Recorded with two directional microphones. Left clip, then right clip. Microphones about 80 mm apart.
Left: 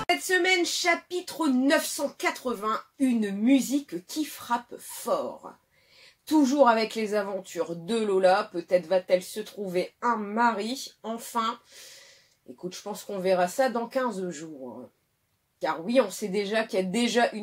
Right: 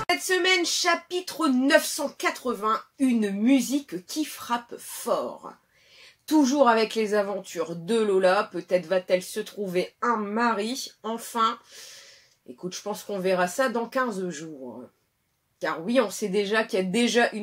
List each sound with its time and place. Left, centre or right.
0.1 s speech: right
6.2 s speech: right
12.6 s speech: right
15.6 s speech: right